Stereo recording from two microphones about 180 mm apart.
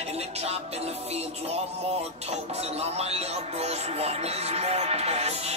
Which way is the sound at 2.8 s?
35° right (ahead or behind).